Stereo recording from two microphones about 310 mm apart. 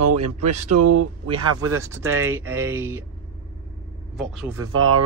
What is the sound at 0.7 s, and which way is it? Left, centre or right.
Speech, right.